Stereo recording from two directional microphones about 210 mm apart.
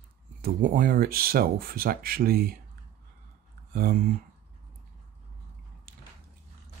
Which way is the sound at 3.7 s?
45° right (ahead or behind).